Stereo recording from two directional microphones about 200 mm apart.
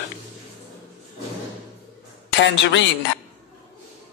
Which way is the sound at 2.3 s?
65° left (ahead or behind).